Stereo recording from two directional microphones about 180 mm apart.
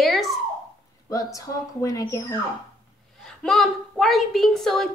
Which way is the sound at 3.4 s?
Centre (ahead or behind).